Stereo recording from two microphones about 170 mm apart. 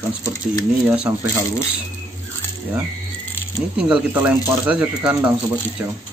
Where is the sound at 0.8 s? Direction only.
5° right (ahead or behind).